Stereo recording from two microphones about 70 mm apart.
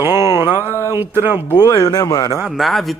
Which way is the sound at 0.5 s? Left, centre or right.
Left.